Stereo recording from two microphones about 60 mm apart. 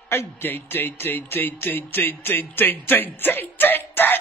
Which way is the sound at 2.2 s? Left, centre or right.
Left.